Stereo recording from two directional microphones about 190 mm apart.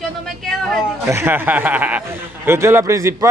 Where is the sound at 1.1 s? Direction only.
10° right (ahead or behind).